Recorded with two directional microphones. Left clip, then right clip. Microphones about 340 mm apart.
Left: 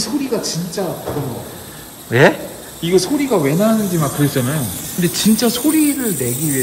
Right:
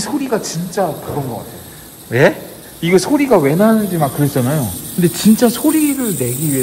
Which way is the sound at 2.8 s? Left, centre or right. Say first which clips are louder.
Right 3 dB; centre.